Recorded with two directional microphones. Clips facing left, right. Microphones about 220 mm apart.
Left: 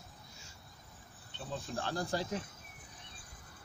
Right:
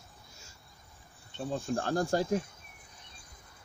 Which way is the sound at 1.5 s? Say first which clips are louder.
Right 7 dB; 45° right (ahead or behind).